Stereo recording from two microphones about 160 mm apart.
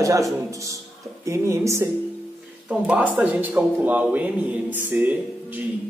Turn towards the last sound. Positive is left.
turn(degrees=-10)  # may be behind; listen again after turning